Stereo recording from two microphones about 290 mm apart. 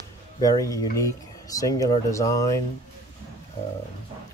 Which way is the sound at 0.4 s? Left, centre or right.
Centre.